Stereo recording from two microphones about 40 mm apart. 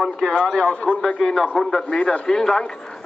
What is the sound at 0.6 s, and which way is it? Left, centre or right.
Speech, left.